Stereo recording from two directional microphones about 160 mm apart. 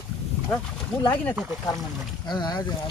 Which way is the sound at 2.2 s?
25° left (ahead or behind).